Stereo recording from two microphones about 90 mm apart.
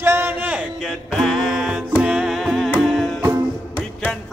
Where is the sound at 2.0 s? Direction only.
5° right (ahead or behind).